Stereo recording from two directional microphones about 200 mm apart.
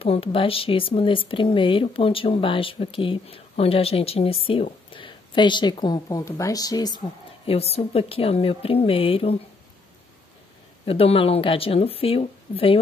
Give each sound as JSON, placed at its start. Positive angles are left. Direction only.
{"t": 0.0, "sound": "speech", "side_deg": 30}
{"t": 7.4, "sound": "speech", "side_deg": 30}
{"t": 10.9, "sound": "speech", "side_deg": 30}